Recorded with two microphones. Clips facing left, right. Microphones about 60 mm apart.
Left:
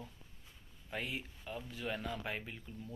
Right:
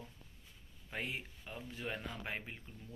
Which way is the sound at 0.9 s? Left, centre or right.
Right.